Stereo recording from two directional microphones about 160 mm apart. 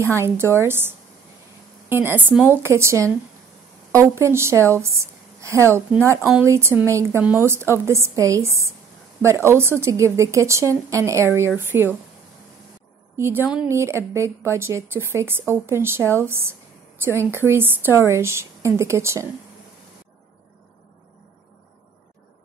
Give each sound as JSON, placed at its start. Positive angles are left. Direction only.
{"t": 0.0, "sound": "a woman's voice", "side_deg": -15}
{"t": 13.2, "sound": "a woman's voice", "side_deg": -15}